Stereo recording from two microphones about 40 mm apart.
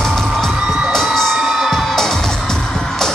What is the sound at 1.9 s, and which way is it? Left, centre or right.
Music, centre.